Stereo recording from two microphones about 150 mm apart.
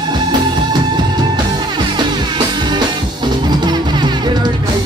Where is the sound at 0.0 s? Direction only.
30° right (ahead or behind).